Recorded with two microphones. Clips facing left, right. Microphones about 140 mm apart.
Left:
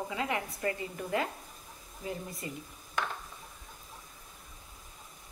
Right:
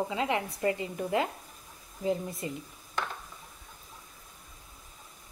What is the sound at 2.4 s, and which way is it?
Speech, 25° right (ahead or behind).